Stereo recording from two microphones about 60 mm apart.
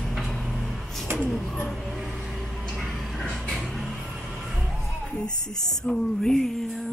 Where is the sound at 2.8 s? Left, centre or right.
Centre.